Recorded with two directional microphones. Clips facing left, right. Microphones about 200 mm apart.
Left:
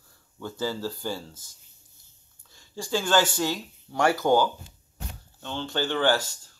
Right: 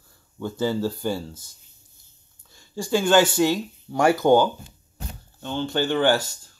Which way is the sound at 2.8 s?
15° right (ahead or behind).